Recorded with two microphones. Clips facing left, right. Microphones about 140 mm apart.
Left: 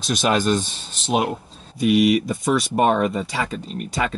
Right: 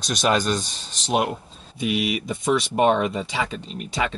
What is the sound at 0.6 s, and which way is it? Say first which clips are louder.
Speech: left 2 dB; 40° right (ahead or behind).